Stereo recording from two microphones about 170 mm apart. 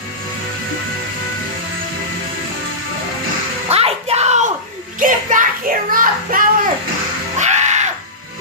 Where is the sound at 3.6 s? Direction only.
35° right (ahead or behind).